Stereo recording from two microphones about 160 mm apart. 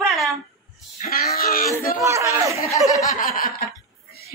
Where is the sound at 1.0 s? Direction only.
70° left (ahead or behind).